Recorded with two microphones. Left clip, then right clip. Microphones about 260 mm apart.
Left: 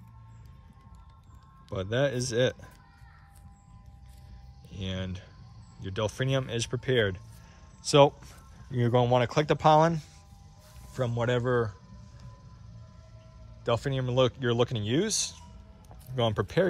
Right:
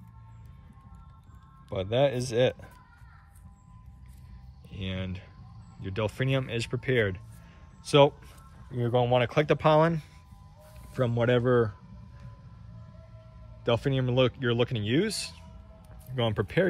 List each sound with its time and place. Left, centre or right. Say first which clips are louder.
1.8 s speech: right 3 dB; centre
4.6 s speech: even; centre
8.7 s speech: even; left; by 11.7 s centre
13.7 s speech: right 2 dB; centre